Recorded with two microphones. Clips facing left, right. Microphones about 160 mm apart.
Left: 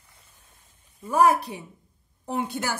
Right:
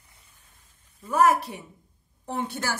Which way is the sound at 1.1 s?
15° left (ahead or behind).